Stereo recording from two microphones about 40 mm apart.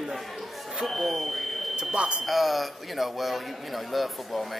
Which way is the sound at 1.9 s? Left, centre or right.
Right.